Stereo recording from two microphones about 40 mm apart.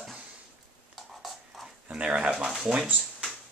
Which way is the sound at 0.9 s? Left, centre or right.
Centre.